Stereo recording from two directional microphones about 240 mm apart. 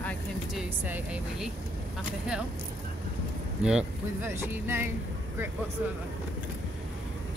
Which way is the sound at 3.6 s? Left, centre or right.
Centre.